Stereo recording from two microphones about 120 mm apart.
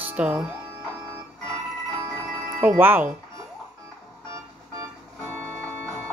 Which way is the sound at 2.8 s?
15° right (ahead or behind).